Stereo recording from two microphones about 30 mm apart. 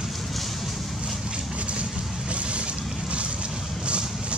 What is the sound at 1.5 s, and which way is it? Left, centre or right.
Vehicle, right.